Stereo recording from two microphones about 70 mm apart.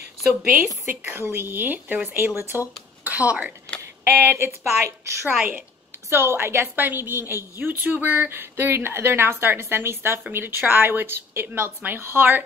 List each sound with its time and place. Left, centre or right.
0.2 s a woman's voice: centre
1.0 s speech: right
2.0 s a woman's voice: right
3.0 s speech: right
4.0 s a woman's voice: right